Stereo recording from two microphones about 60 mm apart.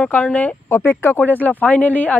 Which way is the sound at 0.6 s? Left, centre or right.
Left.